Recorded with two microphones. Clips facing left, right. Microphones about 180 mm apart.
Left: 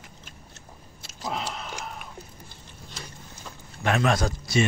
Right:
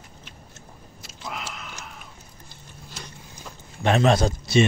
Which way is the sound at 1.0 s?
30° left (ahead or behind).